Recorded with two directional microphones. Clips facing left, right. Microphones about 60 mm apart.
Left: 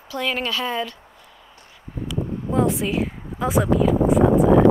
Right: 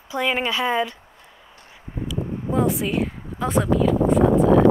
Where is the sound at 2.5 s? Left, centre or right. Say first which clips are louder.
Left 1 dB; centre.